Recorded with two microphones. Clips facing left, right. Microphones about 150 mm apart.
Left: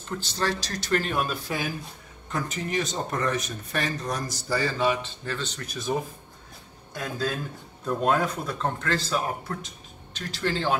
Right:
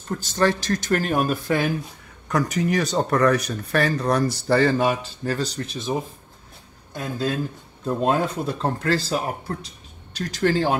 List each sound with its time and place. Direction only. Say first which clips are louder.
0.2 s speech: right 9 dB; 50° right (ahead or behind)
2.5 s speech: right 6 dB; 75° right (ahead or behind)
4.5 s speech: right 5 dB; 55° right (ahead or behind)